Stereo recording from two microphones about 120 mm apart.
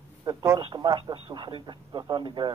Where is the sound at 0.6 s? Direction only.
40° right (ahead or behind).